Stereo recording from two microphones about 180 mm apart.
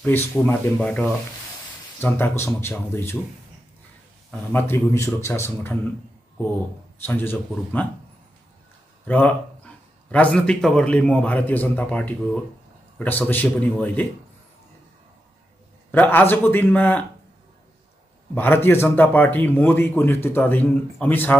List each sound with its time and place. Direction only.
0.0 s speech: 10° left (ahead or behind)
4.3 s speech: 10° left (ahead or behind)
7.1 s speech: 10° left (ahead or behind)
9.0 s speech: 10° left (ahead or behind)
15.9 s speech: 10° left (ahead or behind)
18.3 s speech: 10° left (ahead or behind)